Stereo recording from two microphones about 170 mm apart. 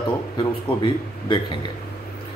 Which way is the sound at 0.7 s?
35° left (ahead or behind).